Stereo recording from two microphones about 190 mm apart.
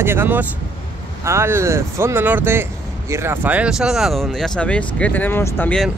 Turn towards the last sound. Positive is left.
turn(degrees=5)  # may be behind; listen again after turning